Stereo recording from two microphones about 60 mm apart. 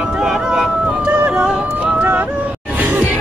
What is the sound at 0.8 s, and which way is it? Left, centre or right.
Yodeling, centre.